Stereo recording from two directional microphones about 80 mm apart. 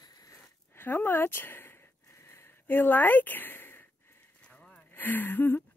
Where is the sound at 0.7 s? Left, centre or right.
Left.